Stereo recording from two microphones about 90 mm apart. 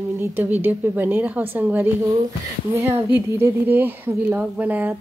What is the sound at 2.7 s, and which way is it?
Speech, 35° right (ahead or behind).